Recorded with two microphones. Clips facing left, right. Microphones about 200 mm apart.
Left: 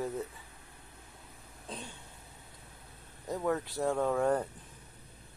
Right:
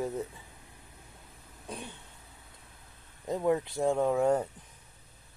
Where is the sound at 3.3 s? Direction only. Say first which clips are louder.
Right 4 dB; 15° right (ahead or behind).